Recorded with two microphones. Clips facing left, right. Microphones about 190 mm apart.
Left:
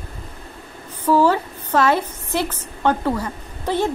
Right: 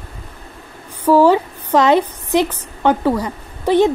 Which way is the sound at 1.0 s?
15° right (ahead or behind).